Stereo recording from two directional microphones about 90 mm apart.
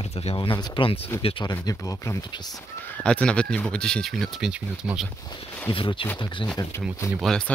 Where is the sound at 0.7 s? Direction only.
80° left.